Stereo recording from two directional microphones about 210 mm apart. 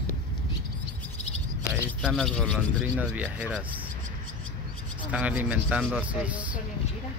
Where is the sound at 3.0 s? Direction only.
5° right (ahead or behind).